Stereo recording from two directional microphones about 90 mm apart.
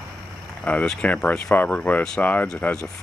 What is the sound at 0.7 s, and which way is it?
Speech, 15° left (ahead or behind).